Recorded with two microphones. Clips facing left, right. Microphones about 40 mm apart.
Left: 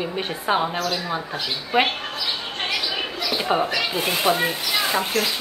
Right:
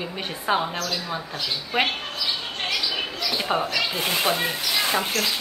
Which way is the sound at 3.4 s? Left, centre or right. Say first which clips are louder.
Left 4 dB; centre.